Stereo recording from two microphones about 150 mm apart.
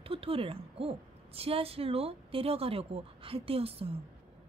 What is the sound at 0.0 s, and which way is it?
A woman's voice, 40° right (ahead or behind).